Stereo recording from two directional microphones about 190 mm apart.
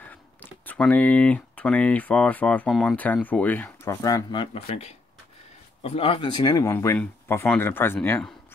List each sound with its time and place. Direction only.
0.0 s speech: 10° left (ahead or behind)